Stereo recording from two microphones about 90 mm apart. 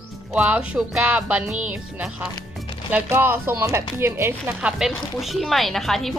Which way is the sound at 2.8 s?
25° right (ahead or behind).